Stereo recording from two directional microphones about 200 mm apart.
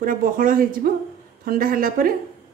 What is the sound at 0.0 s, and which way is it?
Speech, 45° right (ahead or behind).